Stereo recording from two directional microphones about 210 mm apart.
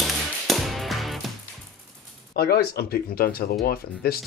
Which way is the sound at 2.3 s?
50° left (ahead or behind).